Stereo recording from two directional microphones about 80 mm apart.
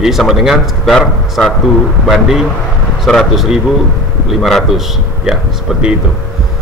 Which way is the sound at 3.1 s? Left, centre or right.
Centre.